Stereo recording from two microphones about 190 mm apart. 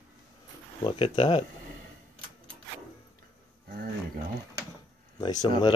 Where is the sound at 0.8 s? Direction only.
30° left (ahead or behind).